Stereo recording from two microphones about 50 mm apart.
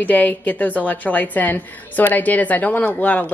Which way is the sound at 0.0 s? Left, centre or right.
Left.